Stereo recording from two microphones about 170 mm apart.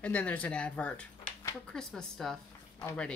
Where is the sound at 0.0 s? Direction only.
10° left (ahead or behind).